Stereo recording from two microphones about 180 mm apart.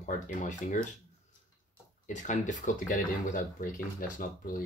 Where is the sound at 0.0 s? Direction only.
45° left (ahead or behind).